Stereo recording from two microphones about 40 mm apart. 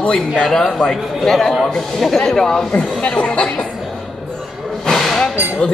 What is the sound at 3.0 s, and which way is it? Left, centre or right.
Speech, left.